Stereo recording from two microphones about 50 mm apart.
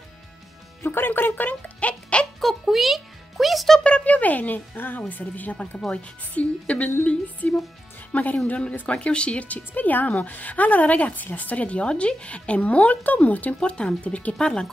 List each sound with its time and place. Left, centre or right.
0.8 s speech: left
2.4 s music: centre
3.8 s a woman's voice: left
13.6 s speech: centre